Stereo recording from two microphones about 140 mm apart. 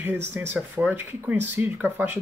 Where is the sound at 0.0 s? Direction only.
15° right (ahead or behind).